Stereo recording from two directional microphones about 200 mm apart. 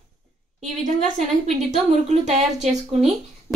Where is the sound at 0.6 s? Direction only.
35° right (ahead or behind).